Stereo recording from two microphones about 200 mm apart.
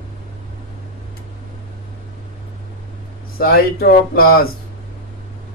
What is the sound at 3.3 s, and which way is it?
Speech, 50° left (ahead or behind).